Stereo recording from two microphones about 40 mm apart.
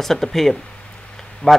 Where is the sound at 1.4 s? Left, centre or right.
Left.